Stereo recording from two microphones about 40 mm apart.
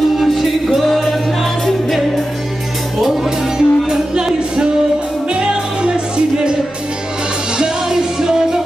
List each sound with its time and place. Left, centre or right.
0.2 s music: centre
3.3 s music: centre
7.5 s music: centre